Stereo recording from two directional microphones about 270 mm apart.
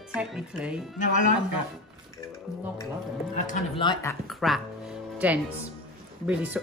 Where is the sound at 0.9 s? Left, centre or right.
Left.